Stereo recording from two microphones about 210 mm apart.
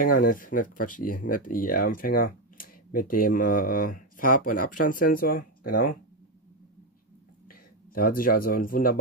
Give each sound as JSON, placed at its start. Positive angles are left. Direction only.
{"t": 0.0, "sound": "speech", "side_deg": 40}
{"t": 7.4, "sound": "speech", "side_deg": 45}